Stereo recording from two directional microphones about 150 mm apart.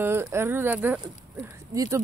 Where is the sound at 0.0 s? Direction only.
15° right (ahead or behind).